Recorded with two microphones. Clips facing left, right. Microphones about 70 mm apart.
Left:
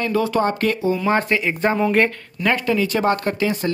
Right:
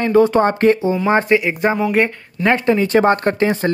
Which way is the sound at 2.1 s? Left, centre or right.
Right.